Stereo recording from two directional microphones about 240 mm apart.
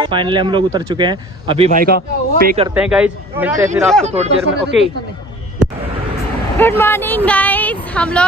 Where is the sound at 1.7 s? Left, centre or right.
Right.